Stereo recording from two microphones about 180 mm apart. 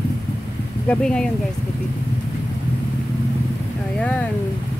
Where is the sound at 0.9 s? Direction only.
5° left (ahead or behind).